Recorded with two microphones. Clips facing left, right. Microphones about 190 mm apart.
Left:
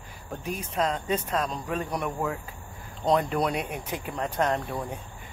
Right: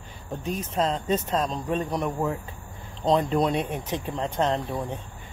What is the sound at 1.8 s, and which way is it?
Speech, 20° right (ahead or behind).